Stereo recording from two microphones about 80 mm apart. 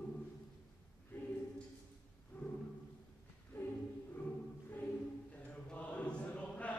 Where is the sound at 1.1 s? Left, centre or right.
Left.